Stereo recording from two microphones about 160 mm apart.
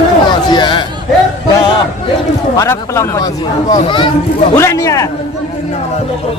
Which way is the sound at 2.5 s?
20° left (ahead or behind).